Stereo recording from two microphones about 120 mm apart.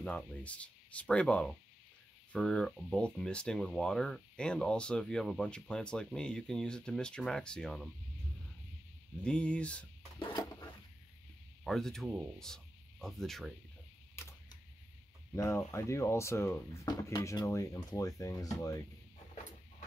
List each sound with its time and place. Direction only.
0.0 s speech: 10° left (ahead or behind)
9.2 s speech: 10° left (ahead or behind)
10.1 s a sound: 40° left (ahead or behind)
11.6 s speech: 5° left (ahead or behind)
14.2 s a sound: 20° left (ahead or behind)
15.3 s speech: 25° left (ahead or behind)
16.8 s speech: 30° left (ahead or behind)